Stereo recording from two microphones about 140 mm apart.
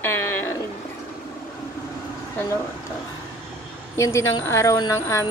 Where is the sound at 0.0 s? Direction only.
15° left (ahead or behind).